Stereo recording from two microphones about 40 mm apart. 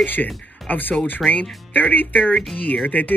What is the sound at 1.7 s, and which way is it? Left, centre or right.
Speech, left.